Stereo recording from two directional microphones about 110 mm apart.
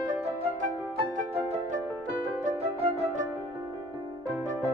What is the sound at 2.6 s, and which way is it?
Music, 70° right (ahead or behind).